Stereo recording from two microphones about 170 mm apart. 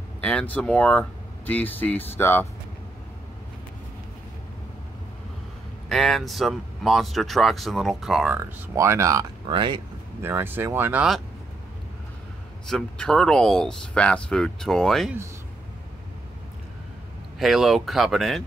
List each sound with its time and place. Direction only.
0.2 s speech: 5° left (ahead or behind)
5.9 s speech: centre (ahead or behind); by 9.8 s 30° right (ahead or behind)
10.2 s speech: 10° right (ahead or behind)
12.6 s speech: 5° left (ahead or behind)
17.4 s speech: centre (ahead or behind)